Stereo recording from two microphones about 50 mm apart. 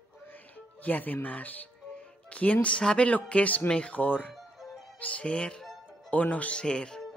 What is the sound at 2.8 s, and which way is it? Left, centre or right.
Speech, centre.